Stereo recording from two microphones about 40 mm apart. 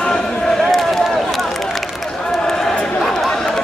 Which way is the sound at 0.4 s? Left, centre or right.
Centre.